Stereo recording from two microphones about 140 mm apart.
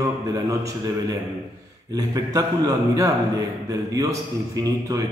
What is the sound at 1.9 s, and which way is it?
A man's voice, 25° right (ahead or behind).